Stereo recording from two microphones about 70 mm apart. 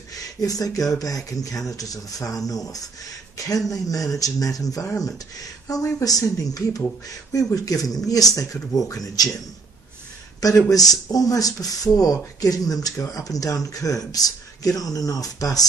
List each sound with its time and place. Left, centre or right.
0.1 s speech: left
10.7 s speech: left